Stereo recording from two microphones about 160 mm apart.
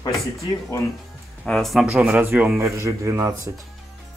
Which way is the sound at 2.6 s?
20° right (ahead or behind).